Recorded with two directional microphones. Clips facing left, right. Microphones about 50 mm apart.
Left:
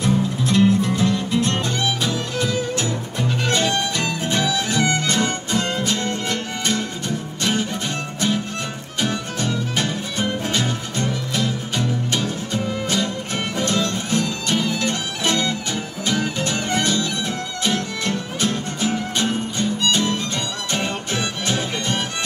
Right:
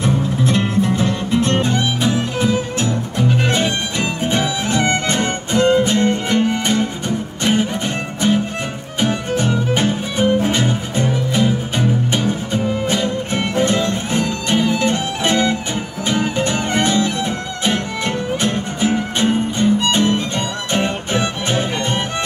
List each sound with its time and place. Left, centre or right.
0.0 s music: right
8.2 s music: right